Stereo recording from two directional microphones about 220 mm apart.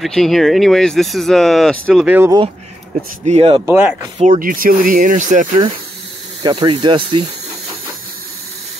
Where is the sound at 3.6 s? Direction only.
10° right (ahead or behind).